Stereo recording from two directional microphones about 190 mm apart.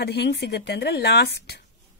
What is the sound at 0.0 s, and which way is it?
A woman's voice, 60° left (ahead or behind).